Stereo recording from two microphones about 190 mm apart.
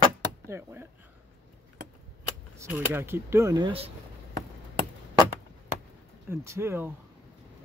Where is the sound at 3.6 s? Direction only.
30° right (ahead or behind).